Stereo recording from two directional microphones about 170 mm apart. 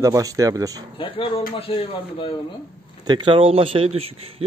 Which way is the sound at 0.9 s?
30° left (ahead or behind).